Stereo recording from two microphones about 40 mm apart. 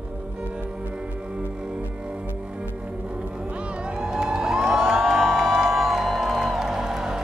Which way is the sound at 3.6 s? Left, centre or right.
Right.